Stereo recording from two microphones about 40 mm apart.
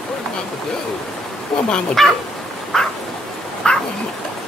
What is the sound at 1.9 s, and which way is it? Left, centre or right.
Speech, centre.